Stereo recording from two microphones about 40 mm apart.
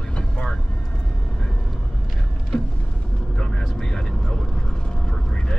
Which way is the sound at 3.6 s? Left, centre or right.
Centre.